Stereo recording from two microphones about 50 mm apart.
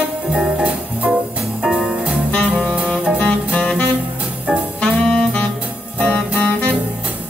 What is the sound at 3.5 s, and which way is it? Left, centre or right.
Music, left.